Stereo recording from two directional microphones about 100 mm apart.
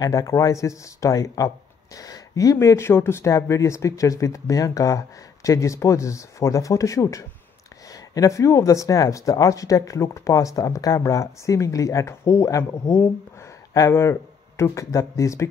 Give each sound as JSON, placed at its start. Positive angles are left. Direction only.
{"t": 0.0, "sound": "speech", "side_deg": 35}